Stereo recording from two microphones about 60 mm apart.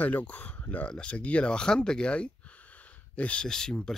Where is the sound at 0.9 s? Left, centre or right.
Centre.